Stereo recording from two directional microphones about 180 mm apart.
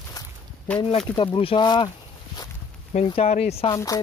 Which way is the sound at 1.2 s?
30° left (ahead or behind).